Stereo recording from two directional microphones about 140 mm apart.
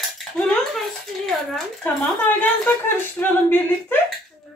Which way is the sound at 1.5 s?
10° left (ahead or behind).